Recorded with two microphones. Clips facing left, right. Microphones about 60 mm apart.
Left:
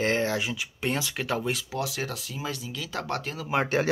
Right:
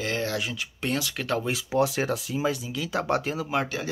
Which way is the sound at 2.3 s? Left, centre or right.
Centre.